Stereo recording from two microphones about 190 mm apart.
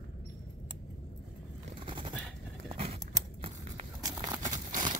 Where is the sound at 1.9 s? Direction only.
25° right (ahead or behind).